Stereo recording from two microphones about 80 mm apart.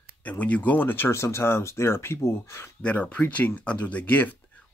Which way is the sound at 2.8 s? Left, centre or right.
Centre.